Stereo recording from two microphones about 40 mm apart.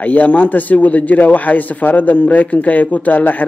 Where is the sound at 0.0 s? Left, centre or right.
Left.